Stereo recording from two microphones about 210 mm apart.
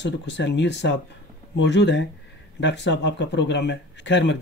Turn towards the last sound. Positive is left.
turn(degrees=55)  # may be behind; listen again after turning